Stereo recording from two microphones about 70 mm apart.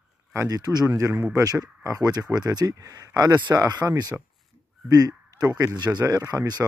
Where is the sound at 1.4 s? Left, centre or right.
Right.